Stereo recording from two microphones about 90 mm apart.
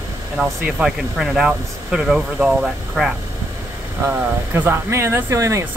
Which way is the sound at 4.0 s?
25° right (ahead or behind).